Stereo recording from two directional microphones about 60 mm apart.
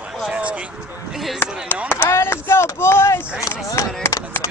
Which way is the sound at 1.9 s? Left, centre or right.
Left.